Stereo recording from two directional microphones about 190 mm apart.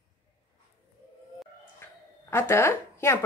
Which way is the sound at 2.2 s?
15° left (ahead or behind).